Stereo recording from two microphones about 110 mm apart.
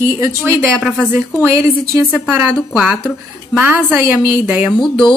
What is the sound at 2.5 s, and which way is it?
Speech, 10° left (ahead or behind).